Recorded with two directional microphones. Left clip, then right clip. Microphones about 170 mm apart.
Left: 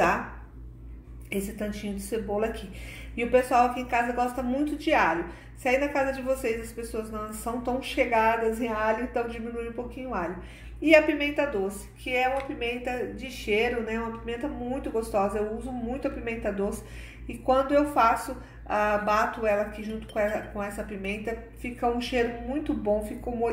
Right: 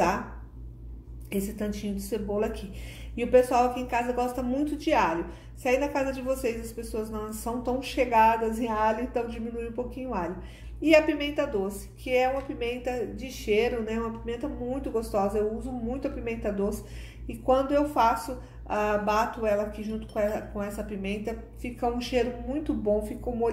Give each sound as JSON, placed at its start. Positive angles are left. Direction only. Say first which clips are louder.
{"t": 1.3, "sound": "a woman's voice", "louder": "even", "side_deg": -5}